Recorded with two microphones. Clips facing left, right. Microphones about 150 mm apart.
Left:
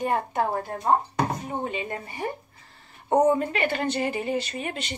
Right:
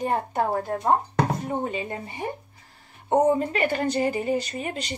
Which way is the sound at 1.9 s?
20° right (ahead or behind).